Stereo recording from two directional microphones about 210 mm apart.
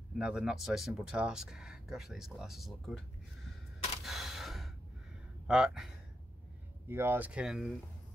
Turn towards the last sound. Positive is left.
turn(degrees=-5)  # may be behind; listen again after turning